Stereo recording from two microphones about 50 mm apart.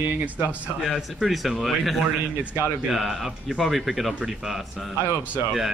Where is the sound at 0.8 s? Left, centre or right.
Centre.